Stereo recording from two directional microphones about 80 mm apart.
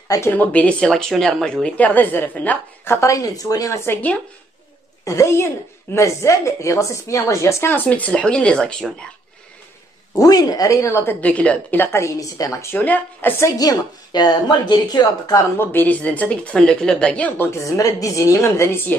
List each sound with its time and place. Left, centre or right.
0.3 s a woman's voice: centre
1.9 s a woman's voice: left
3.0 s speech: left
3.8 s a woman's voice: left
5.0 s a woman's voice: left
7.7 s a woman's voice: left
10.1 s speech: left
11.1 s a woman's voice: centre
12.0 s speech: left
12.7 s a woman's voice: left
13.6 s a woman's voice: left
15.5 s a woman's voice: left
17.4 s a woman's voice: left